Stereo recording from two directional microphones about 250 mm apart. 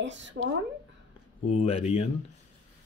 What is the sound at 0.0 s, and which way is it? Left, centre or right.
Speech, right.